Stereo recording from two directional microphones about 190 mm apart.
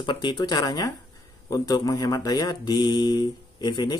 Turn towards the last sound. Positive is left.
turn(degrees=25)  # may be behind; listen again after turning